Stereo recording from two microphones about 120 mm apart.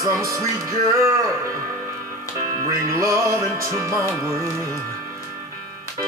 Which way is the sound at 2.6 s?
25° right (ahead or behind).